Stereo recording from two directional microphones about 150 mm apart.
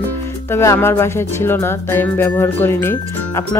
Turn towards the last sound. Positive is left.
turn(degrees=15)  # may be behind; listen again after turning